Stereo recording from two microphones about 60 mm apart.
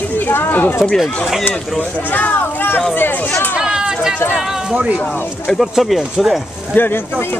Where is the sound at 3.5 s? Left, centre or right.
Centre.